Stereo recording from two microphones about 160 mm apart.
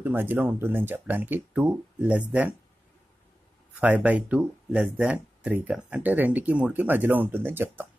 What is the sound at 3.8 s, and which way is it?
Speech, 10° right (ahead or behind).